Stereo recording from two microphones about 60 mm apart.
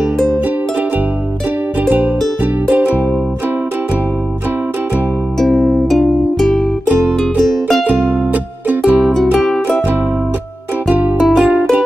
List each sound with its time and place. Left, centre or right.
1.9 s music: right
5.4 s music: centre
7.8 s music: right
11.1 s music: centre